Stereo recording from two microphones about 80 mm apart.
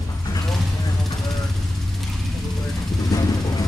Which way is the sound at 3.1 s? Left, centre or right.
Left.